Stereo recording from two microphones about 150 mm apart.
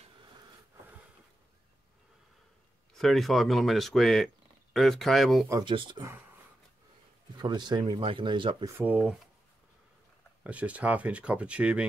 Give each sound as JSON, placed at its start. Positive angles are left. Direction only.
{"t": 2.9, "sound": "speech", "side_deg": 0}
{"t": 5.5, "sound": "speech", "side_deg": -30}
{"t": 7.3, "sound": "speech", "side_deg": -30}
{"t": 8.7, "sound": "speech", "side_deg": -10}
{"t": 10.4, "sound": "speech", "side_deg": -10}